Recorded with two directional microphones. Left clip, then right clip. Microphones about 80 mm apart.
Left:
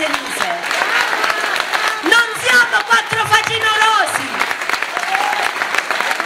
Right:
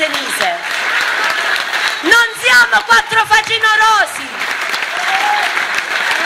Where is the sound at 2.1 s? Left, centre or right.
Right.